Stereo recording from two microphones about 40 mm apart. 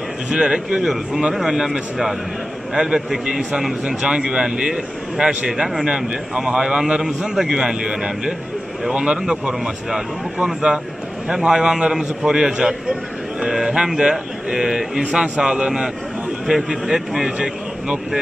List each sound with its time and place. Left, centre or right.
0.3 s a man's voice: right
1.1 s a man's voice: centre
5.9 s a man's voice: centre
9.5 s a man's voice: centre